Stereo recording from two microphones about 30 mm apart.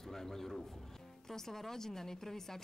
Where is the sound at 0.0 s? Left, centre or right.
Centre.